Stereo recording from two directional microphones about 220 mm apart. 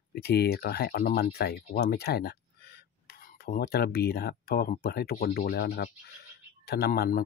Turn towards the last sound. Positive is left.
turn(degrees=45)  # may be behind; listen again after turning